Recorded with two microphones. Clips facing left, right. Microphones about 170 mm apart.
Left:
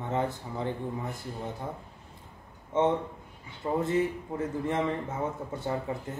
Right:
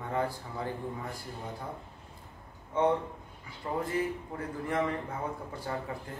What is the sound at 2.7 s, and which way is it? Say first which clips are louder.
Speech: left 2 dB; 25° left (ahead or behind).